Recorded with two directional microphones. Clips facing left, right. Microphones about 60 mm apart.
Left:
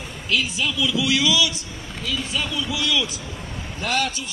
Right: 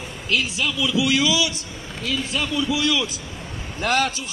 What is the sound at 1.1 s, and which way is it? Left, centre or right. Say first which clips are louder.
Speech: even; right.